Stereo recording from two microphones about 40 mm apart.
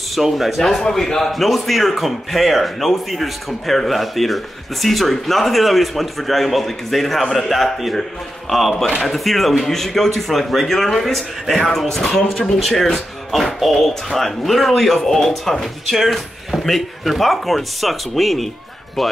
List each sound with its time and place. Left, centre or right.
0.1 s speech: centre
0.6 s speech: centre
12.0 s speech: centre